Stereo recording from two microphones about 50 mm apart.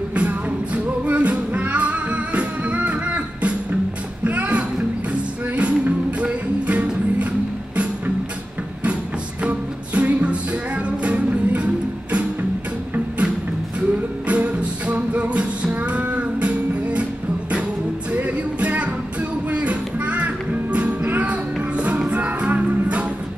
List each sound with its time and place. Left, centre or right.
0.1 s music: right
9.4 s music: right
13.7 s music: right
18.1 s music: right